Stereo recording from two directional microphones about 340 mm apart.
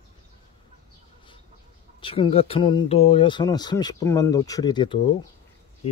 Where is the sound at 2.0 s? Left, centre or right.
Centre.